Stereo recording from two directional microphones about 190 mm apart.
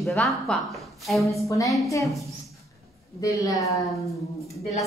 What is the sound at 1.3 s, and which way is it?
Speech, 15° left (ahead or behind).